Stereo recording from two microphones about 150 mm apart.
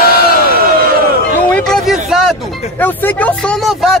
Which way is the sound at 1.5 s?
5° left (ahead or behind).